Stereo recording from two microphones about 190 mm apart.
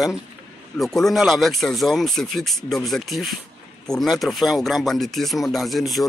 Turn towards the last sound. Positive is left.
turn(degrees=0)  # may be behind; listen again after turning